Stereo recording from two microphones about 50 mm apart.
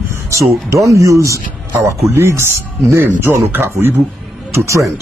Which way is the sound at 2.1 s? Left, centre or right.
Right.